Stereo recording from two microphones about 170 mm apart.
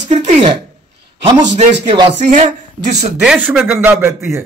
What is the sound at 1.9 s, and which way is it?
Speech, 25° right (ahead or behind).